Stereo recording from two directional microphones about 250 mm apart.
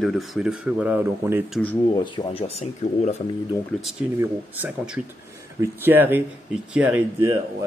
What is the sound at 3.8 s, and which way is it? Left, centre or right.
Speech, centre.